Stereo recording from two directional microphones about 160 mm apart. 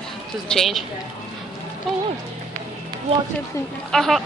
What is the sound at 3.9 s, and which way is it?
Speech, centre (ahead or behind).